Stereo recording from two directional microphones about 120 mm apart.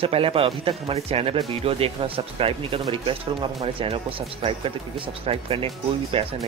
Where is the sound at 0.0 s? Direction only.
50° right (ahead or behind).